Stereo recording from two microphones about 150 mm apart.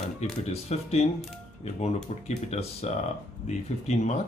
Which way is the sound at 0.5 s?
45° left (ahead or behind).